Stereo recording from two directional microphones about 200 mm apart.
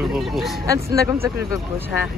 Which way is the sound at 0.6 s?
15° right (ahead or behind).